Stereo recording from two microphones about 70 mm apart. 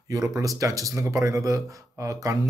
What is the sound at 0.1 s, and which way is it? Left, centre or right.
Speech, right.